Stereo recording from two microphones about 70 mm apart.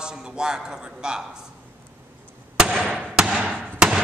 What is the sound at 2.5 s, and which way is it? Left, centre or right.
Fireworks, centre.